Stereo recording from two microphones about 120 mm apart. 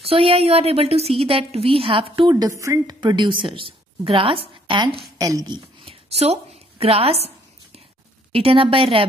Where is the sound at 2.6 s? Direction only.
25° right (ahead or behind).